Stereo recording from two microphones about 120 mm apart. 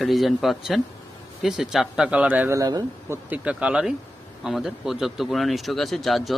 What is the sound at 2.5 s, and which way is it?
Speech, 30° right (ahead or behind).